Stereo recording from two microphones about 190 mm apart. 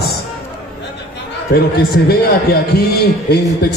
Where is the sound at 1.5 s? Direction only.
55° left (ahead or behind).